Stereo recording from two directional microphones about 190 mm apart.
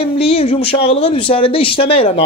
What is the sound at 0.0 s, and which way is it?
Speech, 30° left (ahead or behind).